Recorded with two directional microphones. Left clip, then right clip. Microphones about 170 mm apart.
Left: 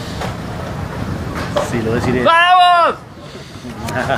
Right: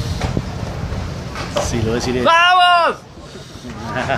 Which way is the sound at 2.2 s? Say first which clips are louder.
Left 2 dB; 50° right (ahead or behind).